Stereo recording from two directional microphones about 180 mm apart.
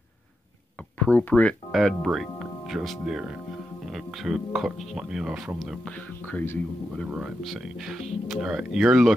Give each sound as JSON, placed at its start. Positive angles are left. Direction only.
{"t": 0.9, "sound": "speech", "side_deg": 10}
{"t": 6.9, "sound": "speech", "side_deg": 0}